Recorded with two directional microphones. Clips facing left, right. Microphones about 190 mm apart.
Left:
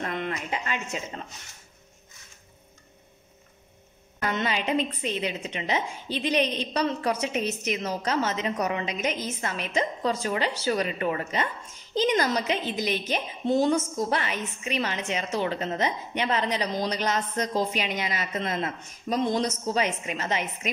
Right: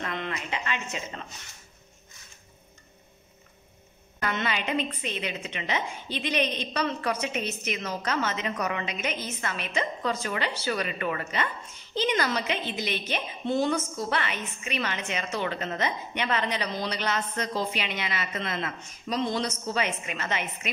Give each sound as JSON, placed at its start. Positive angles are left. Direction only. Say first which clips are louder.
{"t": 0.0, "sound": "speech", "louder": "left 2 dB", "side_deg": 45}
{"t": 4.3, "sound": "a woman's voice", "louder": "left 3 dB", "side_deg": 35}